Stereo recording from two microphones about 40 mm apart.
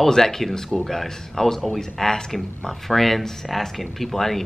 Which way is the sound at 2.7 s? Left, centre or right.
Centre.